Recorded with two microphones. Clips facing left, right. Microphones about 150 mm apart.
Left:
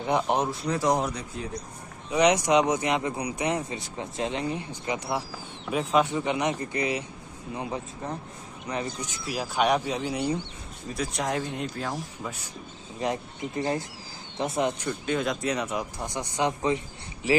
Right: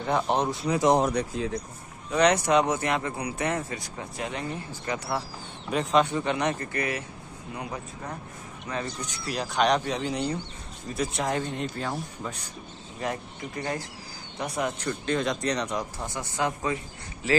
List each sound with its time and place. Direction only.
0.0 s speech: 15° left (ahead or behind)
0.7 s speech: 15° right (ahead or behind)
1.1 s speech: 90° right
2.0 s speech: 10° left (ahead or behind)
5.7 s speech: 5° left (ahead or behind)
9.3 s speech: 5° left (ahead or behind)
11.0 s speech: centre (ahead or behind)
13.0 s speech: 25° left (ahead or behind)
14.8 s speech: 5° left (ahead or behind); by 17.4 s 20° left (ahead or behind)